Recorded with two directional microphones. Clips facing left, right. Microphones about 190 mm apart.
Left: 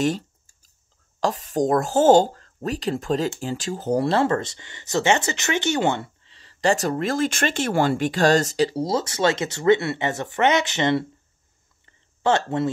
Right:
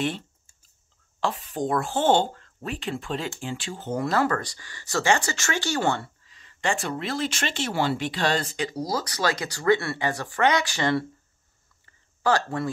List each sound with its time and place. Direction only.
0.0 s clicking: 40° left (ahead or behind)
1.2 s speech: 40° left (ahead or behind); by 6.3 s 20° left (ahead or behind)
6.3 s speech: 35° left (ahead or behind)
11.8 s a sound: 25° left (ahead or behind)